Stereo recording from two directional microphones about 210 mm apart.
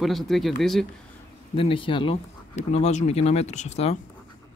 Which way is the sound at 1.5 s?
25° left (ahead or behind).